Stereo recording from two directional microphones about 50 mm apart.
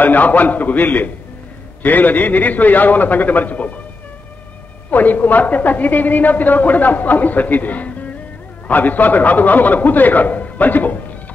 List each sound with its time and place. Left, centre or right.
0.0 s a woman's voice: left
4.9 s a woman's voice: left